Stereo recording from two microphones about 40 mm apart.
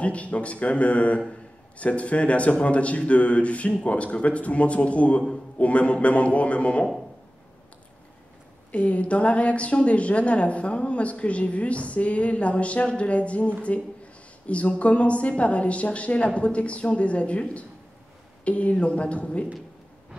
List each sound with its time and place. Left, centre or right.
0.0 s a woman's voice: left
8.7 s a woman's voice: left